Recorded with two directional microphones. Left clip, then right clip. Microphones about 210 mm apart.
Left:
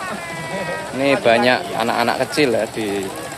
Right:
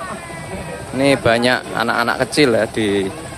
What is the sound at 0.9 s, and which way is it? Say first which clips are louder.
Speech: even; 15° right (ahead or behind).